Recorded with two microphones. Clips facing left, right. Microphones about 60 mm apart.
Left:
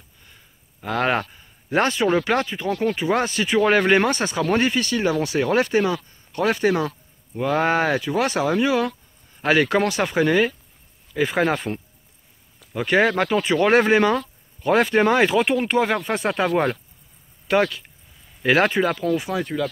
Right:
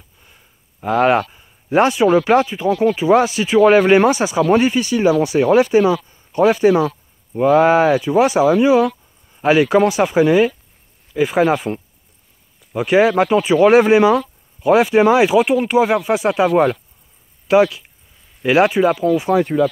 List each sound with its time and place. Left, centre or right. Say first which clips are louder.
0.2 s a sound: left 1 dB; centre
2.2 s speech: right 8 dB; centre
19.2 s speech: right 10 dB; right